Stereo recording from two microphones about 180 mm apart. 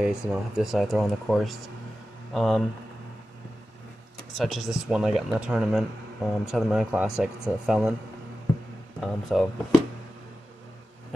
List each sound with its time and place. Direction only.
0.0 s speech: 5° right (ahead or behind)
4.4 s speech: 5° right (ahead or behind)
9.0 s speech: centre (ahead or behind)